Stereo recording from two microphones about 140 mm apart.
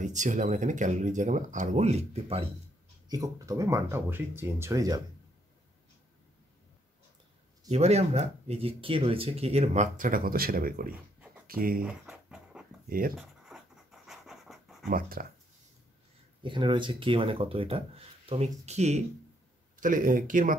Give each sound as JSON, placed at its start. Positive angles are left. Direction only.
{"t": 0.0, "sound": "speech", "side_deg": -60}
{"t": 3.1, "sound": "speech", "side_deg": -25}
{"t": 7.7, "sound": "speech", "side_deg": -50}
{"t": 11.8, "sound": "dog", "side_deg": -5}
{"t": 13.1, "sound": "writing", "side_deg": 0}
{"t": 14.0, "sound": "dog", "side_deg": 0}
{"t": 14.9, "sound": "speech", "side_deg": -90}
{"t": 16.4, "sound": "speech", "side_deg": -35}
{"t": 19.8, "sound": "speech", "side_deg": -70}